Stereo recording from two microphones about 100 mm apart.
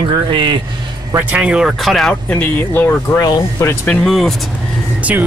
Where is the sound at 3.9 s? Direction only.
5° left (ahead or behind).